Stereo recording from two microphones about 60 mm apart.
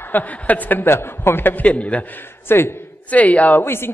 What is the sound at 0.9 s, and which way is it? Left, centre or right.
Speech, left.